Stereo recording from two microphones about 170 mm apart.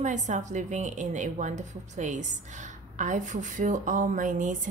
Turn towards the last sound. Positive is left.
turn(degrees=-50)  # may be behind; listen again after turning